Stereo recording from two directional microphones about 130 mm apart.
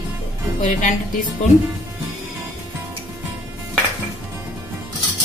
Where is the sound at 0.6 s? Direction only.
75° left (ahead or behind).